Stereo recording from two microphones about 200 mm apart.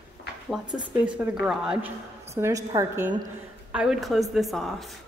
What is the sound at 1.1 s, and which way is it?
Speech, 5° right (ahead or behind).